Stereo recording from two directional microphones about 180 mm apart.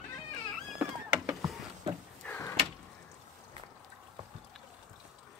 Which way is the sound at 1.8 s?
30° right (ahead or behind).